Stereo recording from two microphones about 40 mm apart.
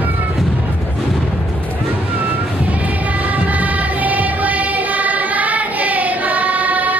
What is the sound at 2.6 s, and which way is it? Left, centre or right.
Music, right.